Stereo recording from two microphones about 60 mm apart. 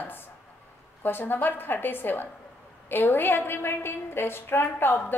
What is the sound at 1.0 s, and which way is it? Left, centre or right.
A woman's voice, left.